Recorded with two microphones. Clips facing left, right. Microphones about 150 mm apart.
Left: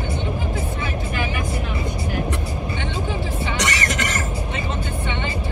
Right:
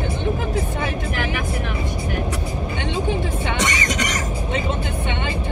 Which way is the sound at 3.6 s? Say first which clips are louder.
Even; 20° right (ahead or behind).